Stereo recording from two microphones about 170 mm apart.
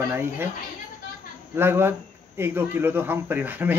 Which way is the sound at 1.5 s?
15° right (ahead or behind).